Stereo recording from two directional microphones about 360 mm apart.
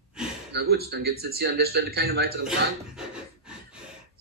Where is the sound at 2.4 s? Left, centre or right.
Centre.